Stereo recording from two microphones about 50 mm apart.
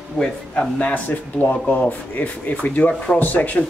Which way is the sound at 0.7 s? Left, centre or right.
Left.